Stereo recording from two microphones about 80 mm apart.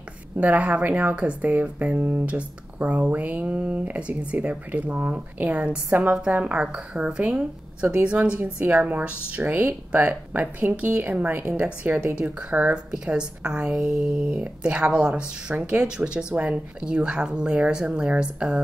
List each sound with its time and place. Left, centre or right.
0.4 s speech: centre